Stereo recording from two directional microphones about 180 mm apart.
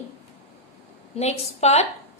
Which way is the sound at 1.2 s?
35° left (ahead or behind).